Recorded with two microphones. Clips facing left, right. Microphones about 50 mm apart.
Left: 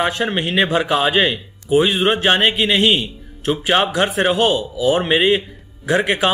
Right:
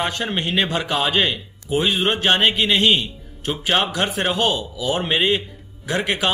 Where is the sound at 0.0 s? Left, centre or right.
Centre.